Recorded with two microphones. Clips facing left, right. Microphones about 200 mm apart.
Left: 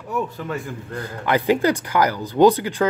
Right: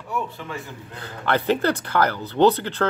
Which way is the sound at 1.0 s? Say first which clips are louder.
Left 2 dB; 10° left (ahead or behind).